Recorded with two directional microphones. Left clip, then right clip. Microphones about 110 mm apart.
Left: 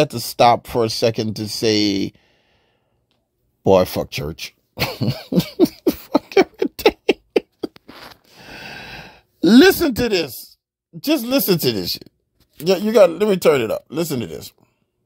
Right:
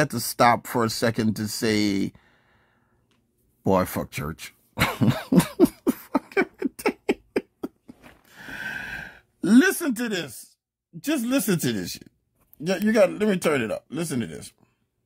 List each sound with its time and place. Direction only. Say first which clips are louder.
0.3 s speech: left 5 dB; 10° left (ahead or behind)
3.6 s speech: left 8 dB; 15° left (ahead or behind)
4.8 s cough: even; 15° right (ahead or behind)
5.4 s beatboxing: left 4 dB; centre (ahead or behind)
5.7 s rodents: left 7 dB; 25° left (ahead or behind); by 7.4 s 40° left (ahead or behind)
8.3 s gasp: right 4 dB; 25° left (ahead or behind); by 12.1 s 50° left (ahead or behind)
12.6 s speech: left 7 dB; 50° left (ahead or behind)